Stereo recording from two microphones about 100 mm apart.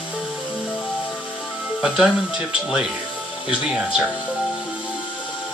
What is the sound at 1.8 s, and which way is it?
Speech, 10° right (ahead or behind).